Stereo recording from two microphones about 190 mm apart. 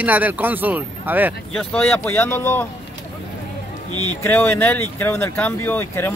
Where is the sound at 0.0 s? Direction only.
10° right (ahead or behind).